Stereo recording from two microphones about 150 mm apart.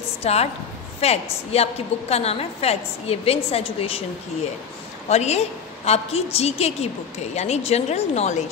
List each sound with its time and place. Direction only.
0.2 s a woman's voice: 45° left (ahead or behind)
5.1 s a woman's voice: 45° left (ahead or behind)